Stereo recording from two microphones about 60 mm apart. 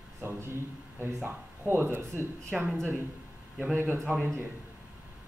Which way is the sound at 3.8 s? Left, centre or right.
Right.